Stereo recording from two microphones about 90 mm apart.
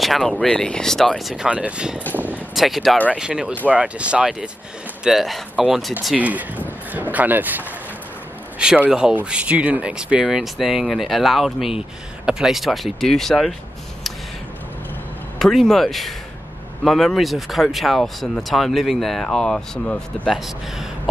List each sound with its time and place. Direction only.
0.0 s speech: centre (ahead or behind)
2.1 s vehicle: 20° right (ahead or behind)
2.5 s speech: centre (ahead or behind)
6.1 s speech: 15° right (ahead or behind); by 13.6 s 5° left (ahead or behind)
15.3 s speech: 5° left (ahead or behind)
20.3 s speech: 5° right (ahead or behind)